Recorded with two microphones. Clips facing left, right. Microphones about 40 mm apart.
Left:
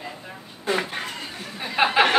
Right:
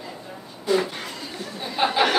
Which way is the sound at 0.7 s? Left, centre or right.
Left.